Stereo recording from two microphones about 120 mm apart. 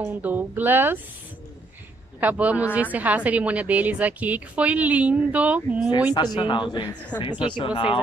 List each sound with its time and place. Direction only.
0.0 s speech: 15° right (ahead or behind)
2.1 s speech: 15° right (ahead or behind)
6.3 s speech: 40° left (ahead or behind)